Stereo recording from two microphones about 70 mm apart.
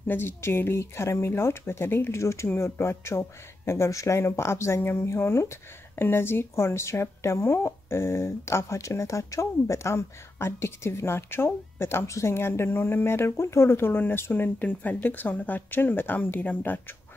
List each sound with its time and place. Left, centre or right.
0.1 s speech: left